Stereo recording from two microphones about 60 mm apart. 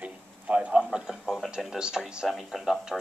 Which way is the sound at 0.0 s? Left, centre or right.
Right.